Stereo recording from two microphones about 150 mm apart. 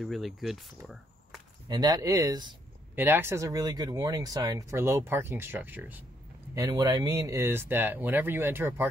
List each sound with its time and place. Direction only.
0.0 s speech: centre (ahead or behind)
1.7 s speech: 25° right (ahead or behind)
3.0 s speech: 15° right (ahead or behind)
6.5 s speech: 25° right (ahead or behind)